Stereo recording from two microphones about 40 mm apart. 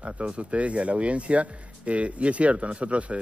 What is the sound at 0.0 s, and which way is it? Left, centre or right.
Speech, right.